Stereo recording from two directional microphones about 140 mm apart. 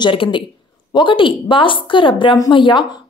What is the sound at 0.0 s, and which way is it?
A woman's voice, 35° left (ahead or behind).